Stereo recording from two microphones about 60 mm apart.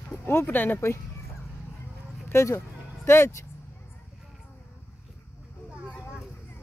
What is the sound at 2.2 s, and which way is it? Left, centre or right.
Speech, left.